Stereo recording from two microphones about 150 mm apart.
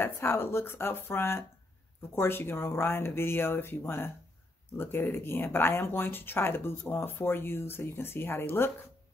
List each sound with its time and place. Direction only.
0.0 s speech: 15° left (ahead or behind)